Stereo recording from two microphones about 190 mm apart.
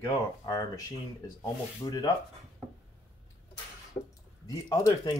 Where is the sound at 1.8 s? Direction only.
20° left (ahead or behind).